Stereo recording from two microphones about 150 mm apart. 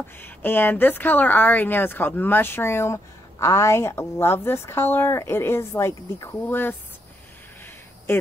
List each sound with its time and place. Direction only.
0.2 s a woman's voice: 15° left (ahead or behind)
8.1 s speech: 15° left (ahead or behind)